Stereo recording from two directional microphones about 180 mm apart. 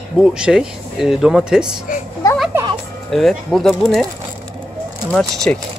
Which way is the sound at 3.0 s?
Centre (ahead or behind).